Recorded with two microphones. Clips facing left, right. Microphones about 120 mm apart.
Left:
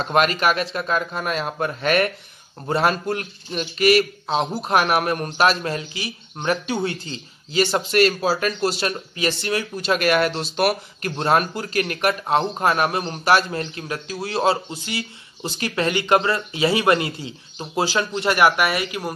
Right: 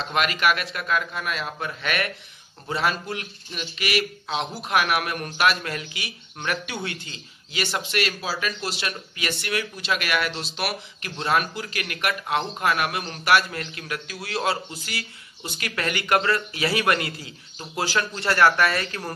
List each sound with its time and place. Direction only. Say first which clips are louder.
0.0 s speech: left 4 dB; 40° left (ahead or behind); by 19.1 s 10° left (ahead or behind)